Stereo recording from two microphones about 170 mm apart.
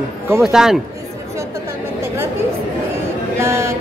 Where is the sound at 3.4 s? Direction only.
15° right (ahead or behind).